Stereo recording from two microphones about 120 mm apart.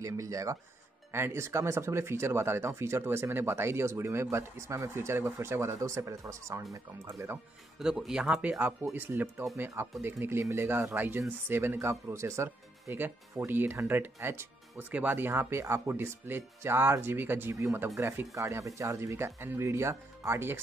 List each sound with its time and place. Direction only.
0.0 s speech: 25° right (ahead or behind)
7.8 s speech: 5° right (ahead or behind)